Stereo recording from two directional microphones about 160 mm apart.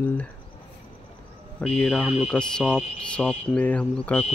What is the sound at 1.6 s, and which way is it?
Speech, 5° left (ahead or behind).